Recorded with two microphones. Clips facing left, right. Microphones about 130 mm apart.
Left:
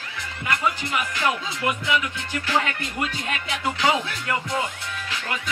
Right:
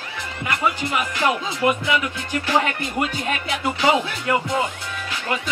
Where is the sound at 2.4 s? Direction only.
20° right (ahead or behind).